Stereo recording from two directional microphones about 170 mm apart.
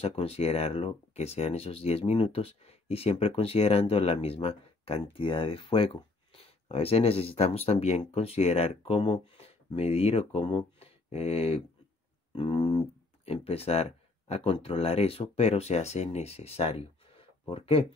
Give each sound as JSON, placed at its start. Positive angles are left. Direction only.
{"t": 0.0, "sound": "speech", "side_deg": 35}